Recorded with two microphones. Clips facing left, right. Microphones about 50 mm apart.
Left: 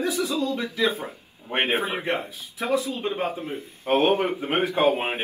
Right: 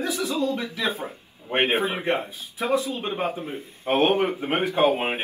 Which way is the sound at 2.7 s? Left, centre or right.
Right.